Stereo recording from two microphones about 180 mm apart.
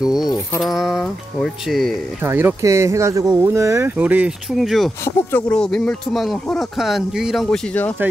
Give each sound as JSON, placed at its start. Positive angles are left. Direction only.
{"t": 0.0, "sound": "music", "side_deg": 20}
{"t": 0.3, "sound": "speech", "side_deg": 0}
{"t": 2.2, "sound": "speech", "side_deg": -10}